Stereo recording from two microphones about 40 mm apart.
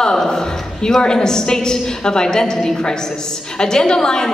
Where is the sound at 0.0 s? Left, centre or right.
Centre.